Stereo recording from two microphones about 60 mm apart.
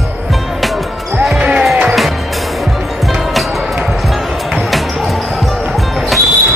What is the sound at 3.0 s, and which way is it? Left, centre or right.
Music, centre.